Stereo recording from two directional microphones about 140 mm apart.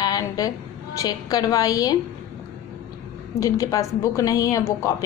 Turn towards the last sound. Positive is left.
turn(degrees=25)  # may be behind; listen again after turning